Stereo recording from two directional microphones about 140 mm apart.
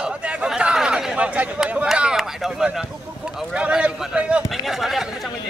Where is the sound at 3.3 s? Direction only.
5° right (ahead or behind).